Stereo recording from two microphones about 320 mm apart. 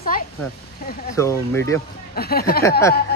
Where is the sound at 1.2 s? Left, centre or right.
Centre.